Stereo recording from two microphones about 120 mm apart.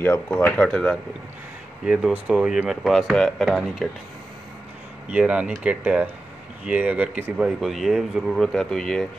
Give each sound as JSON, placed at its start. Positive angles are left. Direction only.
{"t": 0.0, "sound": "speech", "side_deg": 15}
{"t": 1.9, "sound": "speech", "side_deg": -10}
{"t": 5.1, "sound": "speech", "side_deg": -10}
{"t": 7.3, "sound": "speech", "side_deg": -5}